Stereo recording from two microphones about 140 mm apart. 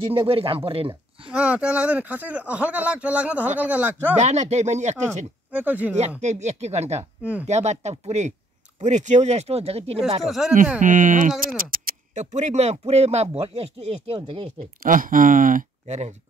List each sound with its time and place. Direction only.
0.1 s speech: 40° right (ahead or behind)
1.3 s speech: 5° right (ahead or behind)
4.2 s speech: 55° right (ahead or behind)
5.5 s speech: 10° right (ahead or behind)
5.9 s speech: 50° right (ahead or behind)
10.2 s speech: centre (ahead or behind)
10.8 s speech: 70° right (ahead or behind); by 11.9 s 90° right
12.2 s speech: 60° right (ahead or behind); by 14.5 s 40° right (ahead or behind)
14.8 s speech: 80° right